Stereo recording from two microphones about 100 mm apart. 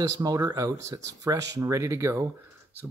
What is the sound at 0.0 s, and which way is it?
Speech, 35° right (ahead or behind).